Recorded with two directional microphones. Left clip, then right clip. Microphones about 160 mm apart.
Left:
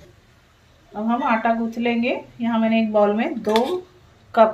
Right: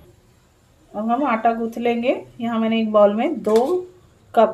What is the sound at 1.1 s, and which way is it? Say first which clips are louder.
Speech: right 1 dB; 50° right (ahead or behind).